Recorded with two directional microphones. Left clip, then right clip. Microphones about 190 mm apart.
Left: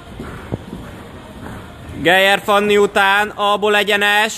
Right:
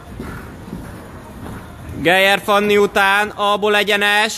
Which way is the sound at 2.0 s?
Centre (ahead or behind).